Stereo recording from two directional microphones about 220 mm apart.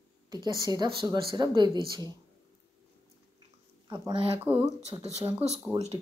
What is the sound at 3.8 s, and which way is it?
Speech, 20° right (ahead or behind).